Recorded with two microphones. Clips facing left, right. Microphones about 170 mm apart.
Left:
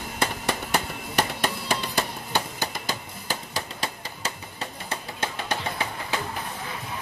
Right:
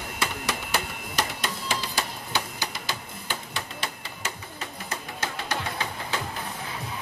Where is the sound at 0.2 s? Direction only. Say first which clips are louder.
Left 4 dB; 55° left (ahead or behind).